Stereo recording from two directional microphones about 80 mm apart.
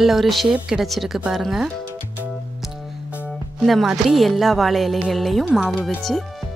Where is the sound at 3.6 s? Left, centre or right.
Centre.